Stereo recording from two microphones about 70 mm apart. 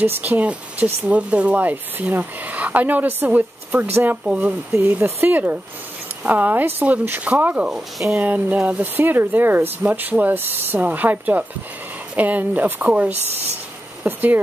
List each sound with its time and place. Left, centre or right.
0.0 s speech: right
4.7 s speech: right
7.7 s speech: centre
8.2 s speech: right